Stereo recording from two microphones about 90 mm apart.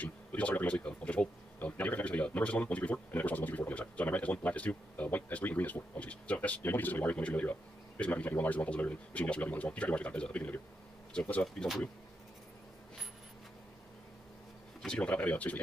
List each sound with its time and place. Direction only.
0.0 s speech: 15° left (ahead or behind)
11.4 s speech: centre (ahead or behind)
14.8 s speech: 10° left (ahead or behind)